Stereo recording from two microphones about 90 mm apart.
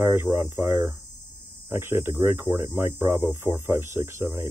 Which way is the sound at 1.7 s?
25° right (ahead or behind).